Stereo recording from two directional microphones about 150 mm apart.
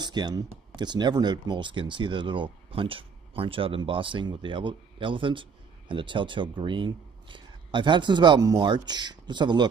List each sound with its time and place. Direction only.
0.0 s speech: 30° right (ahead or behind)